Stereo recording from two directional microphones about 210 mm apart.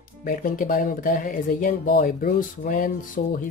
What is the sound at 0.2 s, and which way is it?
Speech, 40° left (ahead or behind).